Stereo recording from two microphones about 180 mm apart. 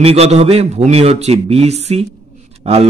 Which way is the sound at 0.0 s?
35° right (ahead or behind).